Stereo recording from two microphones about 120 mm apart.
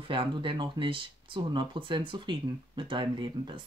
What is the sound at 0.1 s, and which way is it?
Speech, 45° right (ahead or behind).